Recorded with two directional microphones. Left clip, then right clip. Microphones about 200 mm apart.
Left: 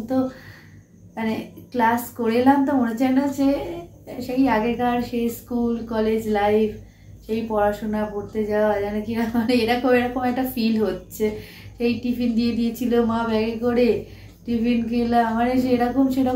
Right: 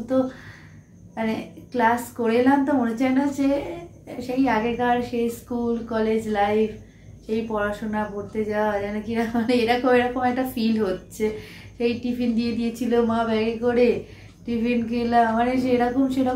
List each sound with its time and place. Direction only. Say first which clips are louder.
1.1 s a woman's voice: even; 5° right (ahead or behind)